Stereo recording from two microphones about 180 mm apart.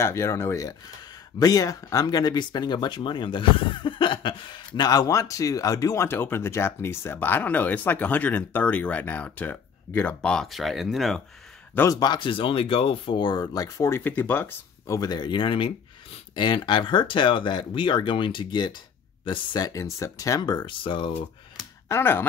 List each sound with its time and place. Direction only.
0.0 s speech: 15° left (ahead or behind); by 11.2 s centre (ahead or behind)
11.7 s speech: 15° left (ahead or behind)
21.8 s speech: 15° left (ahead or behind)